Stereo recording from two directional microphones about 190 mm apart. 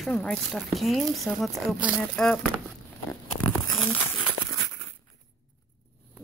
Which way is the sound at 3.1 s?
20° left (ahead or behind).